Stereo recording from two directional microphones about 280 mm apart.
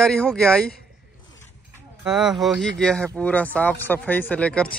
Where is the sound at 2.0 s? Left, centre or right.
Centre.